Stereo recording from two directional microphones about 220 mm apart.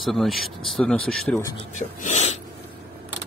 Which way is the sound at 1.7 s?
35° left (ahead or behind).